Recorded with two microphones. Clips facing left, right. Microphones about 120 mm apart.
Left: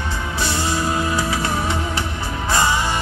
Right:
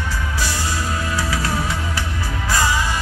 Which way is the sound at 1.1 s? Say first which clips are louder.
Left 2 dB; 25° left (ahead or behind).